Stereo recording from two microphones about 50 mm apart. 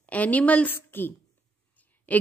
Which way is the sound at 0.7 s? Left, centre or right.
Left.